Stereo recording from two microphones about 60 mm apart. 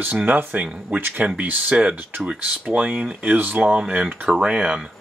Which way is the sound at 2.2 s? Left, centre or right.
Right.